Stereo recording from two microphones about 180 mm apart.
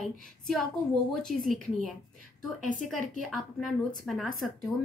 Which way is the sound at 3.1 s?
Centre (ahead or behind).